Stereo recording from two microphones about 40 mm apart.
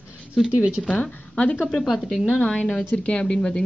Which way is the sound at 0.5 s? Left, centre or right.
Right.